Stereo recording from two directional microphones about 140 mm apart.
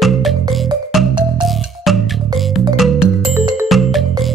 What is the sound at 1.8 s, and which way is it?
Music, centre (ahead or behind).